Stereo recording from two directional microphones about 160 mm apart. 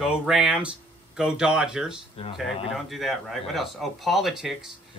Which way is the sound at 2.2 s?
35° left (ahead or behind).